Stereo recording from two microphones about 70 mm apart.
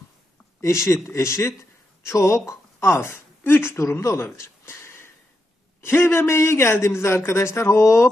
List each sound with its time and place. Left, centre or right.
0.6 s a man's voice: left